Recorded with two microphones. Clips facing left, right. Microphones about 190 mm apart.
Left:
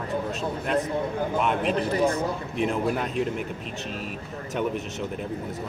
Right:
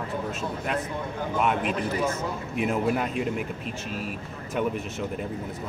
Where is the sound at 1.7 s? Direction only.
35° left (ahead or behind).